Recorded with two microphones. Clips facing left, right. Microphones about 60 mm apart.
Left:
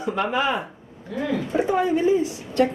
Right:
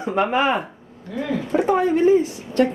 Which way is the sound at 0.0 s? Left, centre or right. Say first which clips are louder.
Right 3 dB; right.